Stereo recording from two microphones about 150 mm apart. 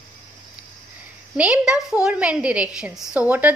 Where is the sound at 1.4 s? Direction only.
5° right (ahead or behind).